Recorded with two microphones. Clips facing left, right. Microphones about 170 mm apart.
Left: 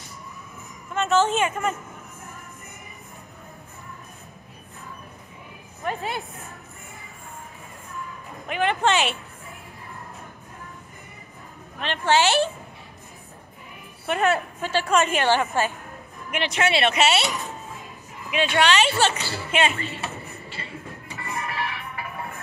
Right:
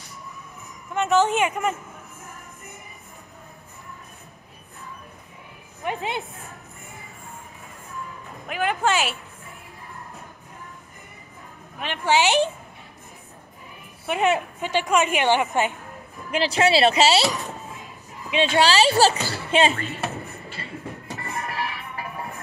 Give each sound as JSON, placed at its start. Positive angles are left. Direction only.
{"t": 0.9, "sound": "a woman's voice", "side_deg": -15}
{"t": 5.9, "sound": "a woman's voice", "side_deg": -20}
{"t": 8.5, "sound": "speech", "side_deg": -5}
{"t": 11.8, "sound": "a woman's voice", "side_deg": -10}
{"t": 14.0, "sound": "a woman's voice", "side_deg": -15}
{"t": 16.3, "sound": "speech", "side_deg": -30}
{"t": 18.4, "sound": "speech", "side_deg": -35}
{"t": 20.6, "sound": "music", "side_deg": -40}